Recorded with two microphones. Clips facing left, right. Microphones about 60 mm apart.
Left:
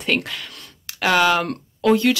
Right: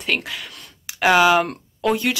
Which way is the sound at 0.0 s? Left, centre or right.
Centre.